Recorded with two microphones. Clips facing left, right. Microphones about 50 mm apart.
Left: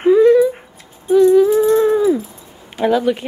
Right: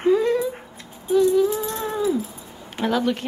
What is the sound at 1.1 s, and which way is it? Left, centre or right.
Music, centre.